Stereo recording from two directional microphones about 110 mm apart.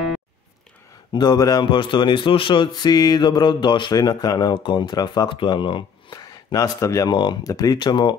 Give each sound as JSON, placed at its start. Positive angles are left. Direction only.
{"t": 1.1, "sound": "speech", "side_deg": 40}
{"t": 1.7, "sound": "speech", "side_deg": 50}
{"t": 6.5, "sound": "speech", "side_deg": 30}